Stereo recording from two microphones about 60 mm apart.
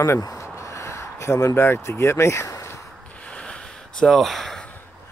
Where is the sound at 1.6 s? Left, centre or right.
Left.